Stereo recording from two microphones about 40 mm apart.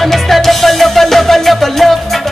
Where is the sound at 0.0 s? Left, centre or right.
Centre.